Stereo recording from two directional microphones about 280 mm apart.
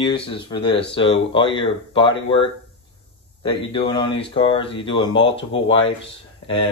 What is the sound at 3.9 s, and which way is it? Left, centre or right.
Speech, centre.